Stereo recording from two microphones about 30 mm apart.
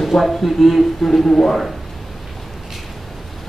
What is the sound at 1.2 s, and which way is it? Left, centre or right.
Speech, left.